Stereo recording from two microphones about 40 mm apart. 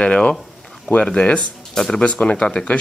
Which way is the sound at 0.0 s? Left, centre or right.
Left.